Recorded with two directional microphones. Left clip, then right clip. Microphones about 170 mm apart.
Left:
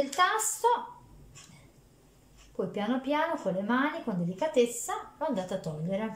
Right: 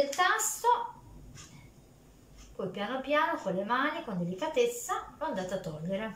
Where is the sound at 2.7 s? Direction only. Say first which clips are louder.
Even; 35° left (ahead or behind).